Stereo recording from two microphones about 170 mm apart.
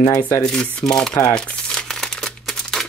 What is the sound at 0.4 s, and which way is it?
Speech, 5° left (ahead or behind).